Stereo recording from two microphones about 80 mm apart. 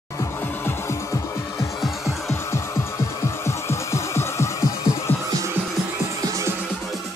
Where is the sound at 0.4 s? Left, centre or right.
Left.